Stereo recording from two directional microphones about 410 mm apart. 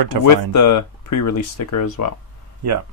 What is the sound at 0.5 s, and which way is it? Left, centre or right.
Speech, left.